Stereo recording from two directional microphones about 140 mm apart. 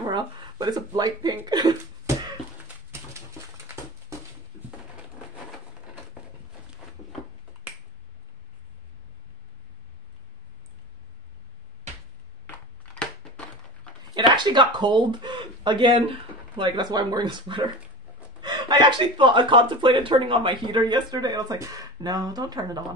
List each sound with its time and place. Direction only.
0.1 s speech: 30° right (ahead or behind)
14.1 s speech: 35° right (ahead or behind)